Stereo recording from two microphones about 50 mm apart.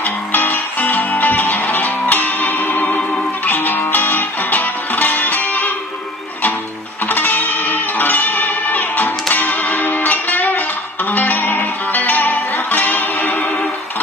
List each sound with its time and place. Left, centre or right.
0.0 s music: left
7.1 s music: left